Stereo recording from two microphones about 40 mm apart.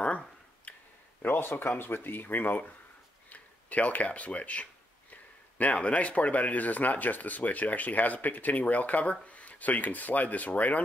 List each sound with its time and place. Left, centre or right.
0.7 s a sound: left
1.2 s speech: left
3.3 s a man's voice: left